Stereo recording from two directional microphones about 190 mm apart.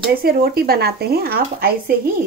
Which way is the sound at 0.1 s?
50° right (ahead or behind).